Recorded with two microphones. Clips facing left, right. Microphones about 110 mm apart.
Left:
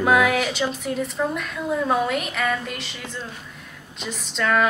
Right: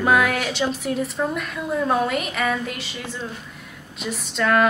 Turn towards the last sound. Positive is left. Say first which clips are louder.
# right 2 dB
turn(degrees=0)  # may be behind; listen again after turning